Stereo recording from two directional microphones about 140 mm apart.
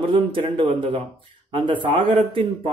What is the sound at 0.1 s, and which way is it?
Speech, 35° right (ahead or behind).